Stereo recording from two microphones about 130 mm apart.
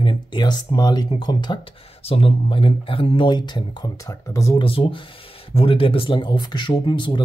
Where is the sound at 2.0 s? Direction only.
45° left (ahead or behind); by 4.5 s 25° left (ahead or behind).